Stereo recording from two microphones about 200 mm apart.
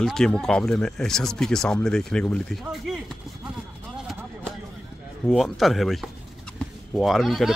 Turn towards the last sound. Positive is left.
turn(degrees=0)  # may be behind; listen again after turning